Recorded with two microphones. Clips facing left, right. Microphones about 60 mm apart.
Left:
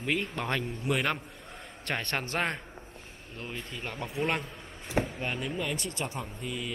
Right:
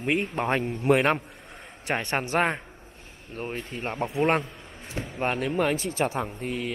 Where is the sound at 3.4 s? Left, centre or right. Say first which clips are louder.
Right 7 dB; right.